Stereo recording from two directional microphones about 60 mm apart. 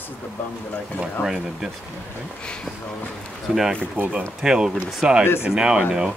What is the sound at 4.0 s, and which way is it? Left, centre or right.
Speech, right.